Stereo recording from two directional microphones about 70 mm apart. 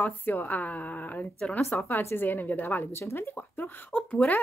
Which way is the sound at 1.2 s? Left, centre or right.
Centre.